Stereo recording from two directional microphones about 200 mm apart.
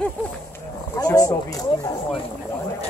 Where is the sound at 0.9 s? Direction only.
20° left (ahead or behind).